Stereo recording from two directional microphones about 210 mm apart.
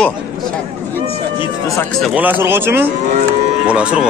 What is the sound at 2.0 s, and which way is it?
Speech, 10° right (ahead or behind).